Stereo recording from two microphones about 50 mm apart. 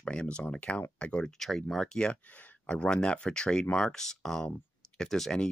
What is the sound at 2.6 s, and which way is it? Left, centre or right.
Speech, left.